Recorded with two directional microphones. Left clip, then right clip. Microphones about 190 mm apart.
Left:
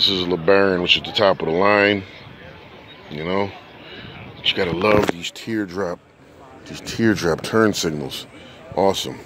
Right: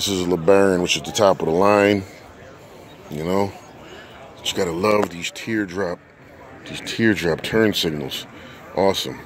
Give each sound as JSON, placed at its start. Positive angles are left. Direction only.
{"t": 0.0, "sound": "speech", "side_deg": -20}
{"t": 3.1, "sound": "speech", "side_deg": -25}
{"t": 4.4, "sound": "speech", "side_deg": -15}
{"t": 4.7, "sound": "speech", "side_deg": 0}